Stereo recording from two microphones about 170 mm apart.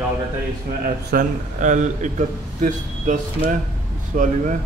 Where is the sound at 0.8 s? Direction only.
55° right (ahead or behind).